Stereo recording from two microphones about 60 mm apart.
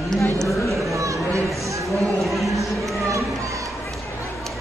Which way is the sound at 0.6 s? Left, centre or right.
Centre.